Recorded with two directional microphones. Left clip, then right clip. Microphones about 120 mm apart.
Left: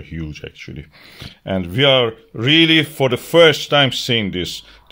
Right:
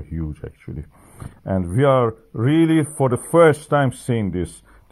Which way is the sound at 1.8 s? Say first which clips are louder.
Left 3 dB; 35° left (ahead or behind).